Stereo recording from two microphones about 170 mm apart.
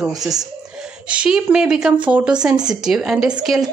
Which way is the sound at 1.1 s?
5° right (ahead or behind).